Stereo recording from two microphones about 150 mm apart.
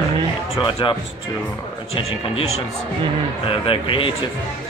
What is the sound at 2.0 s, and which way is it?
Speech, 40° left (ahead or behind).